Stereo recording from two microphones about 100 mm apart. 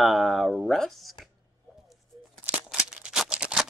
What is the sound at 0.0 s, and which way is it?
Speech, centre (ahead or behind).